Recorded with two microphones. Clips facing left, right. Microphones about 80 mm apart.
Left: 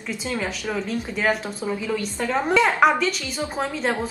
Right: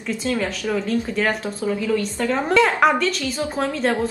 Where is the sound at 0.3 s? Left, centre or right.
Centre.